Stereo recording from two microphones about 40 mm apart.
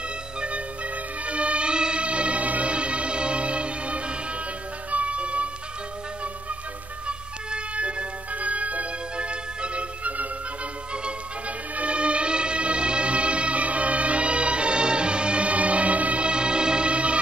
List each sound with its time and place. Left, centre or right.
0.4 s music: right
7.1 s music: right